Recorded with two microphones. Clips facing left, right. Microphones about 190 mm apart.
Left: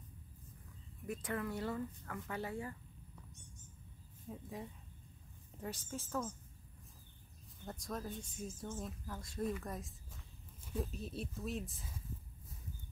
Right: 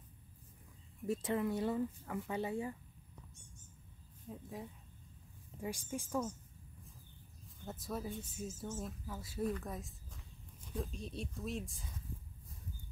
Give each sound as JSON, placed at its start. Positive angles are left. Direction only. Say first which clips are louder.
{"t": 1.0, "sound": "a woman's voice", "louder": "right 5 dB", "side_deg": -25}
{"t": 4.3, "sound": "speech", "louder": "even", "side_deg": 0}
{"t": 5.6, "sound": "a woman's voice", "louder": "right 3 dB", "side_deg": -10}
{"t": 7.6, "sound": "speech", "louder": "right 2 dB", "side_deg": -5}